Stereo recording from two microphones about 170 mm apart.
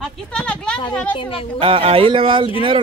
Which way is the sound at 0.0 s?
5° left (ahead or behind).